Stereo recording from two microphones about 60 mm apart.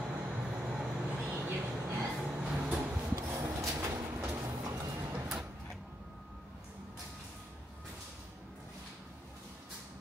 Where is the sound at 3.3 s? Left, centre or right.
Right.